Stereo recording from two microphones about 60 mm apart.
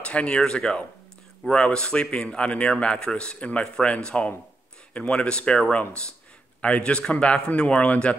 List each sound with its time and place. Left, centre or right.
0.0 s a man's voice: centre